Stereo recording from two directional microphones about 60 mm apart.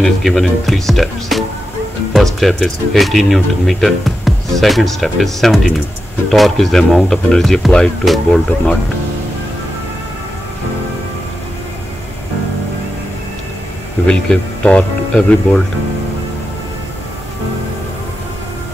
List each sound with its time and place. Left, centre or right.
0.0 s speech: centre
8.0 s speech: centre
14.0 s speech: centre